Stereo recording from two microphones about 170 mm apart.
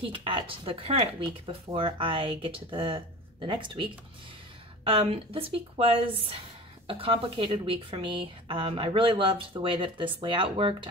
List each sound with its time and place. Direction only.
0.0 s a woman's voice: 30° right (ahead or behind)